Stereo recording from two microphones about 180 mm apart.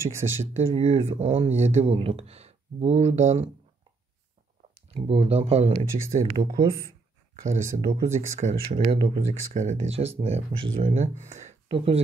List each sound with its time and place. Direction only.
0.0 s speech: 15° right (ahead or behind)
0.6 s speech: 35° right (ahead or behind)
4.7 s speech: 35° right (ahead or behind)
6.3 s speech: 25° right (ahead or behind)
7.9 s speech: 40° right (ahead or behind)